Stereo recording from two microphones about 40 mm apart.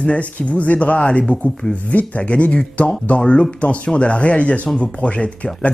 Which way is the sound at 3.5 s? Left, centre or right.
Left.